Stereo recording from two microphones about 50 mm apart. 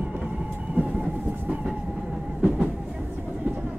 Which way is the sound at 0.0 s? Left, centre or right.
Right.